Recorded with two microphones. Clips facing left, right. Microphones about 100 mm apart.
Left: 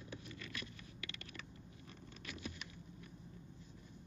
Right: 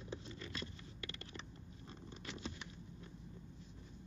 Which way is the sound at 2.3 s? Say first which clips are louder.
Right 1 dB; 25° right (ahead or behind).